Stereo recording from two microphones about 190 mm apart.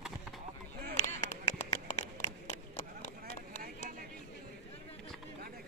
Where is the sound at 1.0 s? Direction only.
40° left (ahead or behind).